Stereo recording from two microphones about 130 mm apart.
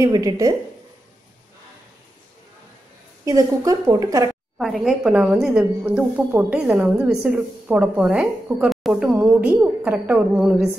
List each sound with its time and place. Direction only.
0.0 s a woman's voice: 25° right (ahead or behind)
3.3 s a woman's voice: 25° right (ahead or behind)
4.6 s a woman's voice: centre (ahead or behind)